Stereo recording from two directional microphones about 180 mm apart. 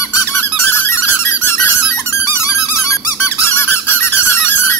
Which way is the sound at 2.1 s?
15° left (ahead or behind).